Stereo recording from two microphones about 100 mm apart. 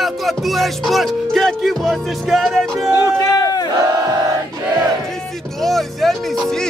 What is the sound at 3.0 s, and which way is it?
Run, 35° left (ahead or behind).